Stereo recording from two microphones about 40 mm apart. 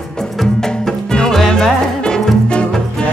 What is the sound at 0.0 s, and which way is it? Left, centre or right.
Music, centre.